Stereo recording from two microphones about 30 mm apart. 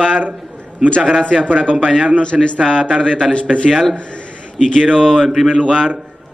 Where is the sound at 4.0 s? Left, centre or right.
Left.